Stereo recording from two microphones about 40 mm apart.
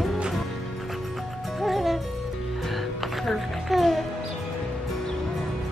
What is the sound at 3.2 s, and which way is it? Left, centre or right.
Music, centre.